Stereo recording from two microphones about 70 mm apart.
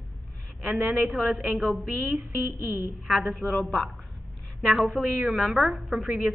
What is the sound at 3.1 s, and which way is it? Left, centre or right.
A woman's voice, centre.